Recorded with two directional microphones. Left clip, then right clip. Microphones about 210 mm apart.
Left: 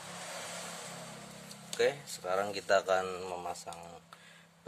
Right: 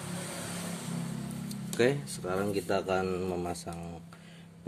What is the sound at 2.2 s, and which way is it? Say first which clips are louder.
Speech: even; 15° left (ahead or behind).